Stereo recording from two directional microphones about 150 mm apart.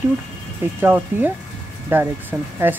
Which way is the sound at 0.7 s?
10° right (ahead or behind).